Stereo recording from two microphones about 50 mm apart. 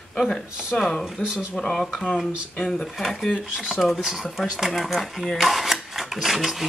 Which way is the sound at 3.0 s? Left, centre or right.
Centre.